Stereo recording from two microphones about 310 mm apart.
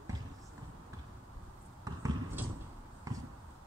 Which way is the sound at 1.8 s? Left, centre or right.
Centre.